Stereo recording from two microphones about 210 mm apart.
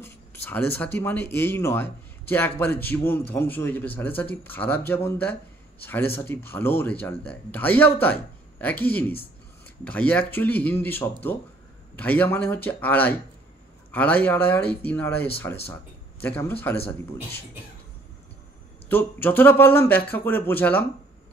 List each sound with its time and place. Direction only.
0.0 s speech: 10° left (ahead or behind)
18.9 s speech: 10° left (ahead or behind)